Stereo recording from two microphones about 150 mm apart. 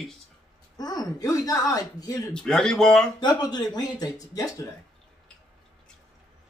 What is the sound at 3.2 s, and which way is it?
Speech, 25° left (ahead or behind).